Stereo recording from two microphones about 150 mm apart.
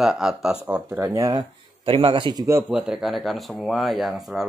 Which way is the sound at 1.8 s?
35° right (ahead or behind).